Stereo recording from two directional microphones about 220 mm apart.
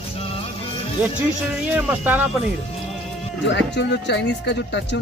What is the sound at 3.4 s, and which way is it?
Speech, 55° left (ahead or behind).